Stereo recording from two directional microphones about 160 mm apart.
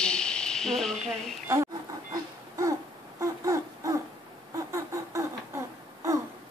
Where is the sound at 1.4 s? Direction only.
20° right (ahead or behind).